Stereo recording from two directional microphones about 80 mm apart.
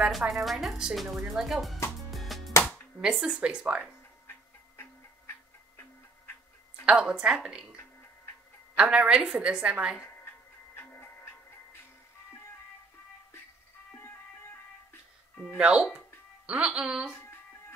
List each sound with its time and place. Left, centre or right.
0.0 s speech: centre
2.0 s music: centre
3.0 s a woman's voice: centre
4.3 s music: left
6.9 s a woman's voice: centre
8.7 s a woman's voice: centre
10.2 s music: left
13.9 s music: left
15.5 s a woman's voice: centre
17.2 s music: left